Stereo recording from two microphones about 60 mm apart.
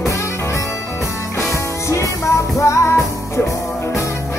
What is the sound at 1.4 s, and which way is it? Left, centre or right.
Music, left.